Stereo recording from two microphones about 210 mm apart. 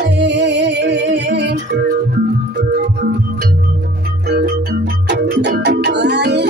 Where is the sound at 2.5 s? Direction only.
50° right (ahead or behind).